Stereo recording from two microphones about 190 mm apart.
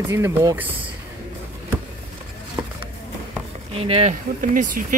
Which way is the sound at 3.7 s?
30° right (ahead or behind).